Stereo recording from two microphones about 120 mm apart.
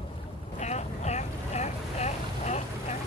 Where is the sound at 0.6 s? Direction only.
70° left (ahead or behind).